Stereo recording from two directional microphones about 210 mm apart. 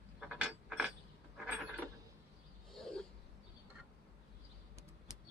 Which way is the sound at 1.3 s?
5° right (ahead or behind).